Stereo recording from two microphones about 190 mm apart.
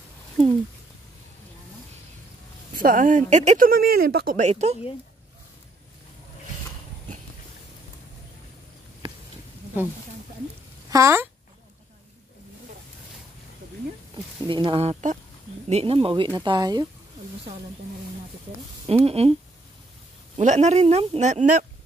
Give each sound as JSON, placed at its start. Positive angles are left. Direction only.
{"t": 2.7, "sound": "speech", "side_deg": -45}
{"t": 4.4, "sound": "speech", "side_deg": -35}
{"t": 9.0, "sound": "a sound", "side_deg": -25}
{"t": 10.9, "sound": "speech", "side_deg": -15}
{"t": 14.1, "sound": "speech", "side_deg": -25}
{"t": 18.9, "sound": "speech", "side_deg": -30}
{"t": 20.3, "sound": "speech", "side_deg": -40}